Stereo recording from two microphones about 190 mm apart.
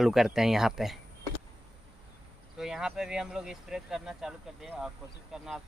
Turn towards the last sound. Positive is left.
turn(degrees=0)  # may be behind; listen again after turning